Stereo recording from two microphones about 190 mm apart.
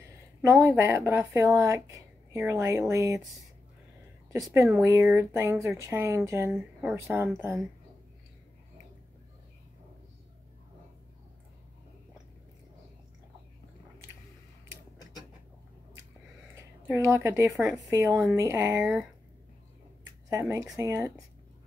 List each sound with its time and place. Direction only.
0.4 s speech: 15° right (ahead or behind)
4.3 s speech: 15° right (ahead or behind)
16.8 s speech: 15° right (ahead or behind)
17.5 s speech: centre (ahead or behind)
17.8 s speech: 15° right (ahead or behind)
20.2 s speech: 15° right (ahead or behind)